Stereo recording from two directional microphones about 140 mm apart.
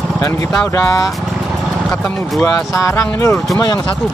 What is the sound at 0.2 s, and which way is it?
Speech, 20° left (ahead or behind).